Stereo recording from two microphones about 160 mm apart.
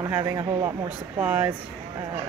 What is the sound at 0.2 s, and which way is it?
Speech, 20° right (ahead or behind).